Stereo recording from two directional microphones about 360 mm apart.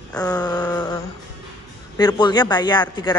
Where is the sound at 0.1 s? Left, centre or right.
Centre.